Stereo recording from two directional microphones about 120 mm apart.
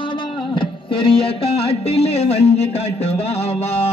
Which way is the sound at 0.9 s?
50° left (ahead or behind).